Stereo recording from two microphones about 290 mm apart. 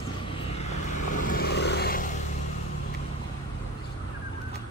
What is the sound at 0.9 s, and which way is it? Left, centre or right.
Vehicle, left.